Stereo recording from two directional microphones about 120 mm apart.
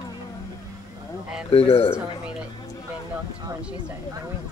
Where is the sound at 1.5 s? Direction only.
50° left (ahead or behind).